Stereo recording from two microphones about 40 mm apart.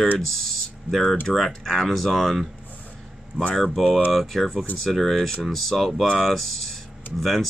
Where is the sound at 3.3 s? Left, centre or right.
Right.